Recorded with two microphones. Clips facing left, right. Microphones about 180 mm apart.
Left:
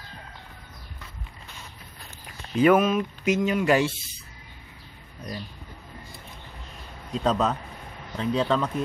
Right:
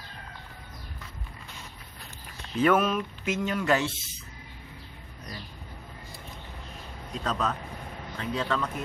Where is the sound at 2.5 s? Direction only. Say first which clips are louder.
Left 4 dB; 10° left (ahead or behind).